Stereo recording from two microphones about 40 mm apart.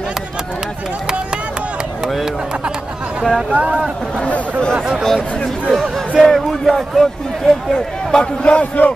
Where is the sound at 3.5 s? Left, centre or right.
Right.